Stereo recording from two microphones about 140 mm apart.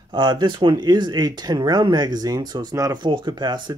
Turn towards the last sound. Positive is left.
turn(degrees=-30)  # may be behind; listen again after turning